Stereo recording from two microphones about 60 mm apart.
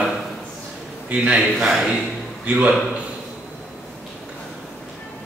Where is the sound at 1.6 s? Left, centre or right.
Centre.